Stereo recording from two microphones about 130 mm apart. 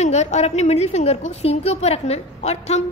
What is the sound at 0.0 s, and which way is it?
A woman's voice, 60° left (ahead or behind).